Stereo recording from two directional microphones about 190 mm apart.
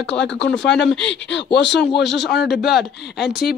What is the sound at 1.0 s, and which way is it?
Speech, 65° left (ahead or behind).